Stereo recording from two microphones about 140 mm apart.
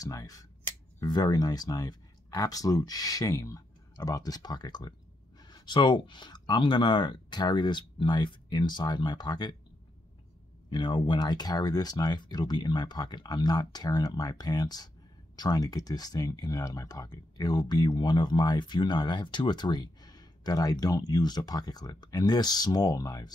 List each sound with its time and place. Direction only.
0.0 s speech: 25° left (ahead or behind)
10.7 s speech: 35° left (ahead or behind)